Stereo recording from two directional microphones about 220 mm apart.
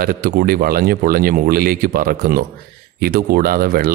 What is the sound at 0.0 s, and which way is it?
Speech, 45° right (ahead or behind).